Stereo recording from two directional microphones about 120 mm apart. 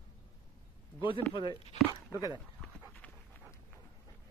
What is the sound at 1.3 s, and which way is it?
Speech, 40° left (ahead or behind).